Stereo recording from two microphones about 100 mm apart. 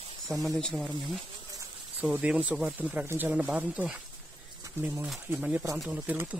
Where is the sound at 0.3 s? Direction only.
Centre (ahead or behind).